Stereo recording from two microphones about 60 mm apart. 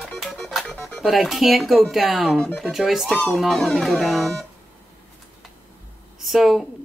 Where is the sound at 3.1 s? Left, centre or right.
Centre.